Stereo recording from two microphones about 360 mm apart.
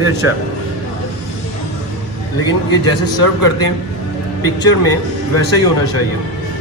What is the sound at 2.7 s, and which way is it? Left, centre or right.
A man's voice, right.